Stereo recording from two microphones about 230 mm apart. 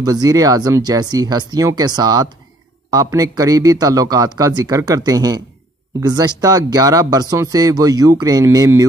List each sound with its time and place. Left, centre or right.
0.0 s speech: centre